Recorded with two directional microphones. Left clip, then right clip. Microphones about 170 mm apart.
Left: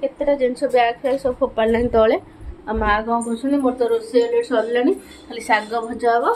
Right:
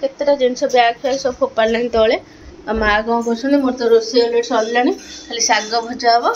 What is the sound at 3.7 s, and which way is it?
Speech, 20° right (ahead or behind).